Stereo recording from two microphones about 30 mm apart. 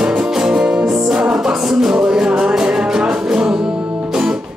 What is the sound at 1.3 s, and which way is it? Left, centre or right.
Music, centre.